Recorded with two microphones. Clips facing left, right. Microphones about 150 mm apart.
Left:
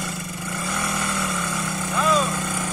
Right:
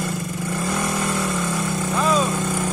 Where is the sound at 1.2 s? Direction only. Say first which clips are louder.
Right 4 dB; centre (ahead or behind).